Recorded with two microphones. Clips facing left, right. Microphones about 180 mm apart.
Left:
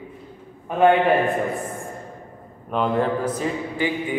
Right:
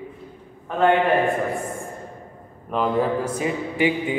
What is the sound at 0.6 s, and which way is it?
Speech, 15° left (ahead or behind).